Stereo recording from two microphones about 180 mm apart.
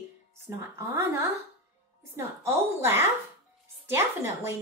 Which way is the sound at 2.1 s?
15° right (ahead or behind).